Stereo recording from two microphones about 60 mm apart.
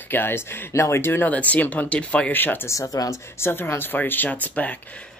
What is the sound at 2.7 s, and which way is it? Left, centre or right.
Speech, left.